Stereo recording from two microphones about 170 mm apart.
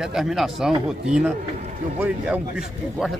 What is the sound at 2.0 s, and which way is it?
Speech, 5° right (ahead or behind).